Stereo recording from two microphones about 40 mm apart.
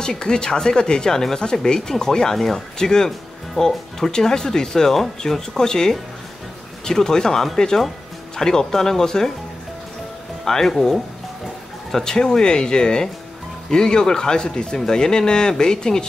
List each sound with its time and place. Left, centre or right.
0.0 s speech: centre
10.4 s speech: centre